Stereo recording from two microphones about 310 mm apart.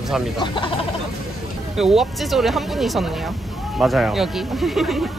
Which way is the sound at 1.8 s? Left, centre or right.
Centre.